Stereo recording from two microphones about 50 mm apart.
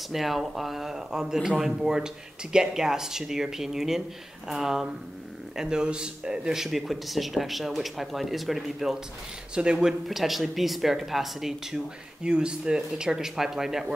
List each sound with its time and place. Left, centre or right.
0.1 s speech: centre
9.6 s speech: centre
10.0 s speech: centre
12.2 s speech: centre